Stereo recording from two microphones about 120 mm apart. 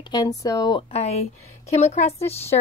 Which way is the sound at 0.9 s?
60° left (ahead or behind).